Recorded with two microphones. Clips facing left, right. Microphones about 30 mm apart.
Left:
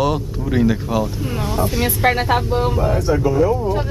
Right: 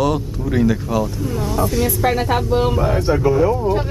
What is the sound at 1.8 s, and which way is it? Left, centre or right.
Speech, left.